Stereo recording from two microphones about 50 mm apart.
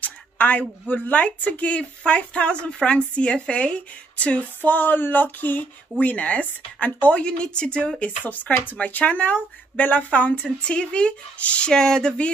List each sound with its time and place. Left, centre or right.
0.0 s speech: left
4.6 s speech: left
11.7 s speech: centre